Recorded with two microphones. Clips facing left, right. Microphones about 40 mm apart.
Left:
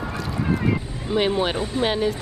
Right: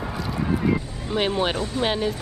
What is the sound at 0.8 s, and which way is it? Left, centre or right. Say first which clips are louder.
Speech: left 2 dB; centre.